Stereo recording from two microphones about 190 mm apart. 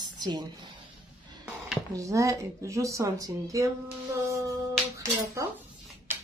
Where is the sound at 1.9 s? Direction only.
15° right (ahead or behind).